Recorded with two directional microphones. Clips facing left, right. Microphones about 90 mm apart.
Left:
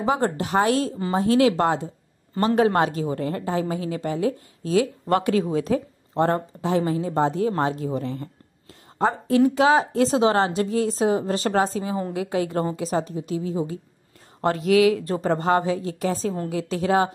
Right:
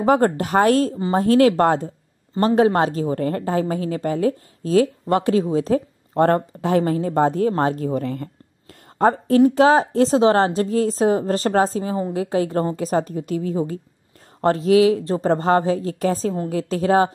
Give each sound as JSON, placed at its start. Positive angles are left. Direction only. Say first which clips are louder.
{"t": 0.0, "sound": "speech", "louder": "right 6 dB", "side_deg": -50}
{"t": 2.4, "sound": "a woman's voice", "louder": "right 3 dB", "side_deg": -30}
{"t": 3.2, "sound": "a woman's voice", "louder": "right 4 dB", "side_deg": -50}
{"t": 6.1, "sound": "a woman's voice", "louder": "right 5 dB", "side_deg": -55}
{"t": 14.4, "sound": "speech", "louder": "right 3 dB", "side_deg": -35}
{"t": 15.2, "sound": "a woman's voice", "louder": "right 3 dB", "side_deg": -40}